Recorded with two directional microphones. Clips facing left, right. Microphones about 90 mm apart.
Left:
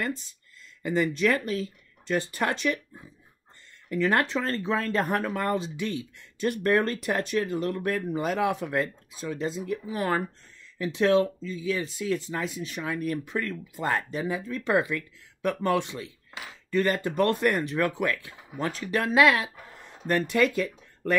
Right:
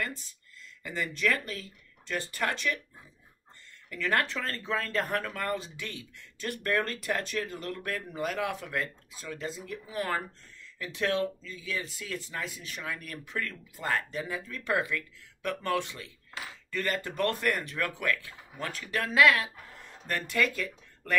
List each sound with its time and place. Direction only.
0.8 s speech: 20° left (ahead or behind)
3.9 s speech: 25° left (ahead or behind)